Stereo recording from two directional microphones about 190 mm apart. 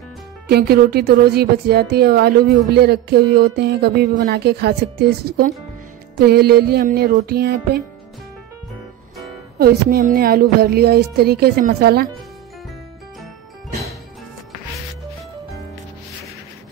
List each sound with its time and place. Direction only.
0.5 s a woman's voice: 55° right (ahead or behind)
9.6 s speech: 55° right (ahead or behind)